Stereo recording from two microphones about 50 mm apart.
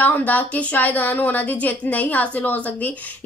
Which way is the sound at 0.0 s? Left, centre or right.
Left.